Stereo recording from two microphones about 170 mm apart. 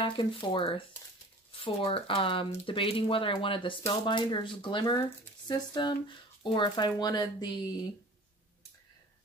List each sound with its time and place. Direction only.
0.0 s speech: 30° left (ahead or behind)